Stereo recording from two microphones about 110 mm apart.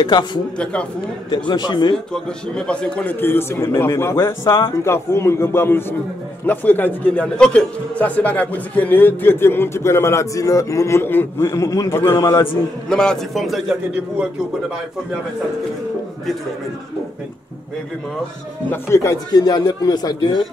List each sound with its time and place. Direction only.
0.0 s speech: 45° left (ahead or behind)
1.5 s speech: 40° left (ahead or behind)
2.1 s speech: 5° left (ahead or behind); by 12.0 s 30° left (ahead or behind)
12.9 s a man's voice: 5° left (ahead or behind)
18.7 s speech: 25° left (ahead or behind); by 20.4 s 40° left (ahead or behind)